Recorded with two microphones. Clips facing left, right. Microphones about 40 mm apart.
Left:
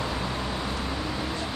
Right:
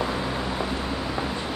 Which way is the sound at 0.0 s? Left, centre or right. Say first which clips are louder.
Right 3 dB; centre.